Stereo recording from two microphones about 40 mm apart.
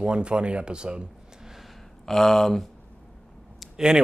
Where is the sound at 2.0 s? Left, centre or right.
Centre.